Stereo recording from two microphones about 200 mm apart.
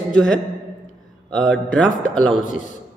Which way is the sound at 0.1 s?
5° left (ahead or behind).